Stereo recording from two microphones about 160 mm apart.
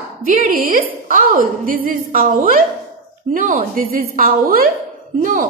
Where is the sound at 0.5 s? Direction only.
60° right (ahead or behind).